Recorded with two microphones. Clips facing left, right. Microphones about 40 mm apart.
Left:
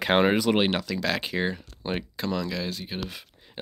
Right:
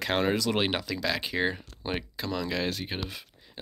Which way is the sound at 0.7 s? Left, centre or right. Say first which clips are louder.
Left 2 dB; centre.